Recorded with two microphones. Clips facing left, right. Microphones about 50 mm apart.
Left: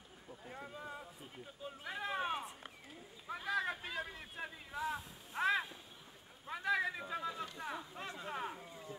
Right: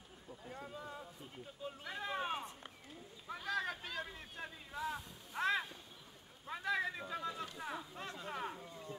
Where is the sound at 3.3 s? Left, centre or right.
Centre.